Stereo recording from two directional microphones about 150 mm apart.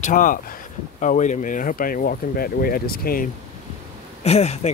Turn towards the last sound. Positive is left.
turn(degrees=45)  # may be behind; listen again after turning